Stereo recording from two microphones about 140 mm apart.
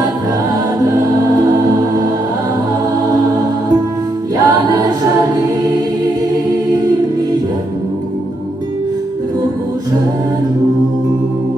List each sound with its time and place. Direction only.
4.4 s music: 30° right (ahead or behind)